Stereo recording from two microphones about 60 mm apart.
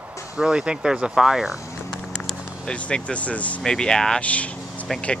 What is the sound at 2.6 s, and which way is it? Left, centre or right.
Speech, centre.